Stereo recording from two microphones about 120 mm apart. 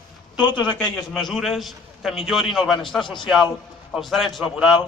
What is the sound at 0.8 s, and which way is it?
A man's voice, 5° left (ahead or behind).